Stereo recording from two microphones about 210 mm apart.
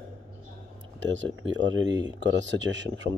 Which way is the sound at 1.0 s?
65° right (ahead or behind).